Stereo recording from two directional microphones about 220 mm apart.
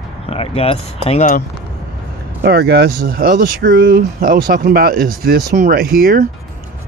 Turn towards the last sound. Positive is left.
turn(degrees=-40)  # may be behind; listen again after turning